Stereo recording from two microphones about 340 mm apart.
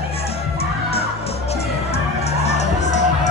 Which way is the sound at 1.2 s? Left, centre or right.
Centre.